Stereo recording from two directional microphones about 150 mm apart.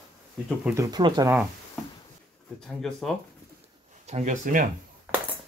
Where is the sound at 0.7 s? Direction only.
25° right (ahead or behind).